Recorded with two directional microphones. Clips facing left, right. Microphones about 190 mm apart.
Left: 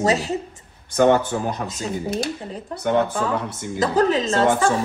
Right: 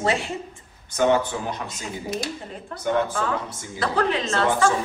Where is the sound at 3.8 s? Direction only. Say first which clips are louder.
Left 5 dB; 40° left (ahead or behind).